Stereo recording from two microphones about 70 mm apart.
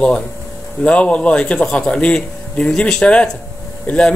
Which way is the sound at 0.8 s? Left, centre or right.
Centre.